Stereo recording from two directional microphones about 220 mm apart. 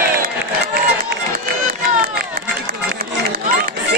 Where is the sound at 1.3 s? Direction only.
45° right (ahead or behind).